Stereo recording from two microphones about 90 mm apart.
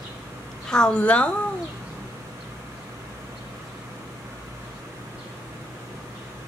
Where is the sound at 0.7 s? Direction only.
10° left (ahead or behind).